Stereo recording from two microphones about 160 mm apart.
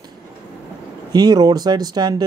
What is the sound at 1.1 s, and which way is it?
A man's voice, 25° right (ahead or behind).